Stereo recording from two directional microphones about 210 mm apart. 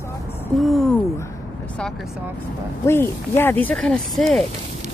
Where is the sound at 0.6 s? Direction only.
Centre (ahead or behind).